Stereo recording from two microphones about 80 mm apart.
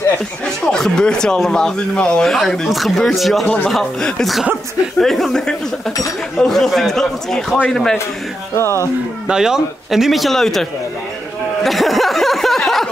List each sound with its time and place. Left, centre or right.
0.7 s speech: centre
3.4 s speech: centre
3.7 s speech: centre
9.3 s speech: centre
11.6 s a sound: centre